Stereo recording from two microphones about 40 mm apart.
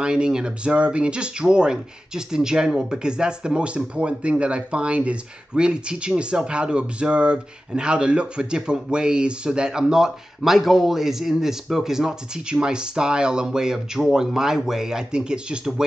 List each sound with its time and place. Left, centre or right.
0.0 s speech: right